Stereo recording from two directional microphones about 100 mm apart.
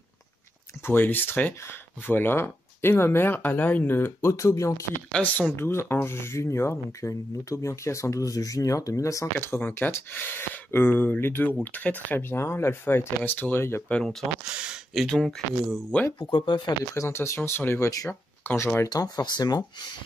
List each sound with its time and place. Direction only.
0.8 s speech: 20° left (ahead or behind)
5.1 s speech: 15° left (ahead or behind)
5.6 s speech: 25° left (ahead or behind)
13.8 s speech: 10° left (ahead or behind)
14.5 s a sound: 10° right (ahead or behind)
15.0 s speech: 5° left (ahead or behind)
16.2 s speech: 55° left (ahead or behind)
16.9 s speech: 30° left (ahead or behind)
18.9 s speech: 40° left (ahead or behind)